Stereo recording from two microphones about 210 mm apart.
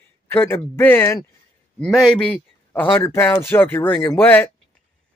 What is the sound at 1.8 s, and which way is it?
A man's voice, centre (ahead or behind).